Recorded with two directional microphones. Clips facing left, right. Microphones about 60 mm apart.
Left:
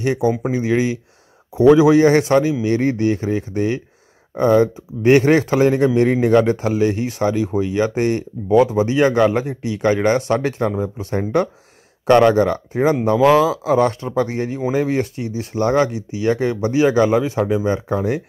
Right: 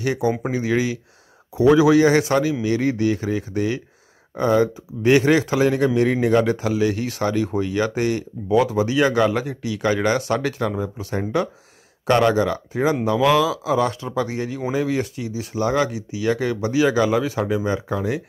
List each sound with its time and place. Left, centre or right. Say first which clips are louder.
0.0 s speech: left 3 dB; left